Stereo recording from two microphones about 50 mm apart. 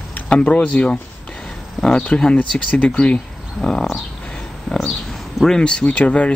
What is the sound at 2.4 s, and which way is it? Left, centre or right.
Speech, left.